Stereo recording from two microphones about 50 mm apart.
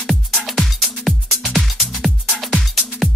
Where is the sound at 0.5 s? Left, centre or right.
Centre.